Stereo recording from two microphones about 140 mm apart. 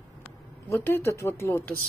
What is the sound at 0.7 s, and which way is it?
Speech, 15° left (ahead or behind).